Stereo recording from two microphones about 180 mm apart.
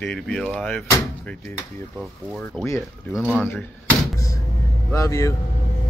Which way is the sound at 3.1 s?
5° right (ahead or behind).